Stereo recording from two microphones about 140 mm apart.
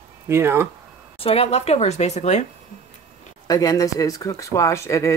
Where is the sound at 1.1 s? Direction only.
45° left (ahead or behind).